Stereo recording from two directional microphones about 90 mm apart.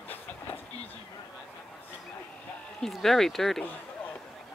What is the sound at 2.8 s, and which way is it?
Speech, centre (ahead or behind).